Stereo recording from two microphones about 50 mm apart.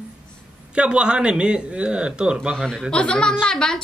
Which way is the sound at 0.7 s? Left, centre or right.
Right.